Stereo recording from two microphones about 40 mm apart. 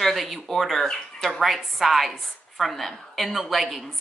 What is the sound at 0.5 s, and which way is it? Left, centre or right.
A woman's voice, centre.